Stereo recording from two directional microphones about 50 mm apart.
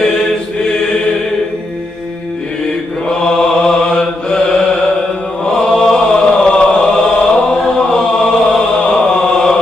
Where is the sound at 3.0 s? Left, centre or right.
Centre.